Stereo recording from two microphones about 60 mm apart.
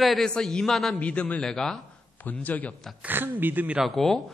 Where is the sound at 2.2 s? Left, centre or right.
Left.